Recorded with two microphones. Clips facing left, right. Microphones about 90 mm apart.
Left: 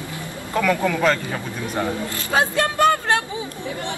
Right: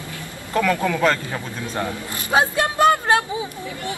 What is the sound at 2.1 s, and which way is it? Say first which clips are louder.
Speech: right 3 dB; 20° right (ahead or behind).